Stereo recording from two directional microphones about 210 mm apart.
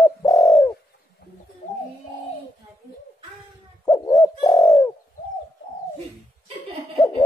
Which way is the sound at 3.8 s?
15° left (ahead or behind).